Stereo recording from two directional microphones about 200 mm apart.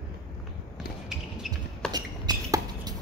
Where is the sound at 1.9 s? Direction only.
20° right (ahead or behind).